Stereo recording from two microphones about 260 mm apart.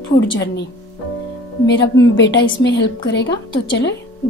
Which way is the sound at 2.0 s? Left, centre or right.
Left.